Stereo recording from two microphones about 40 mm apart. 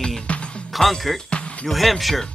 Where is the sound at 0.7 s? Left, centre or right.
Centre.